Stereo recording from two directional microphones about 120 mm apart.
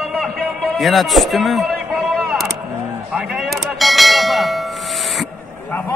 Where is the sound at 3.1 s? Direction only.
Centre (ahead or behind).